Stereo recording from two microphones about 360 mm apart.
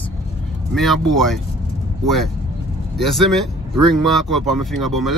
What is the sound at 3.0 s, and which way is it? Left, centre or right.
A man's voice, centre.